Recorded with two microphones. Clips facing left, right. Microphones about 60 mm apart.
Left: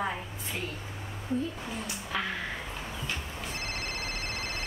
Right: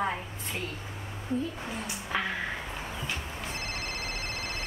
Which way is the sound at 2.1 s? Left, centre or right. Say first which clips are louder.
Right 2 dB; right.